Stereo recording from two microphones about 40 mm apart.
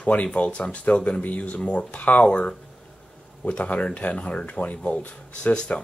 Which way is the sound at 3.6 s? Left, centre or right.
Left.